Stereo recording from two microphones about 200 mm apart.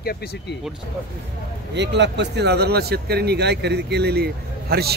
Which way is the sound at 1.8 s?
60° right (ahead or behind).